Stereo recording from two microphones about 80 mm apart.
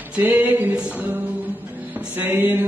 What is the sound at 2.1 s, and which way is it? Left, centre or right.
Music, right.